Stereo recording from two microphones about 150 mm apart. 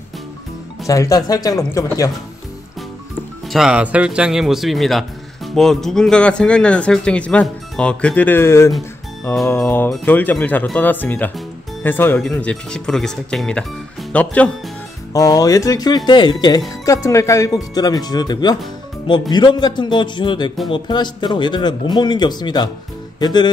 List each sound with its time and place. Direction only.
0.8 s speech: 20° left (ahead or behind)
3.4 s speech: 5° right (ahead or behind)
15.1 s a man's voice: 25° left (ahead or behind)
23.1 s music: 30° left (ahead or behind)